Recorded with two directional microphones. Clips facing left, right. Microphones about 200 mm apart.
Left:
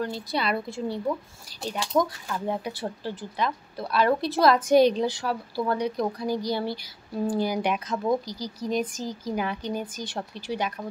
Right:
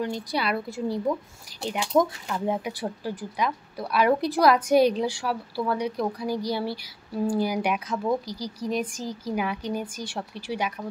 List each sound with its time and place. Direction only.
0.0 s speech: 15° right (ahead or behind)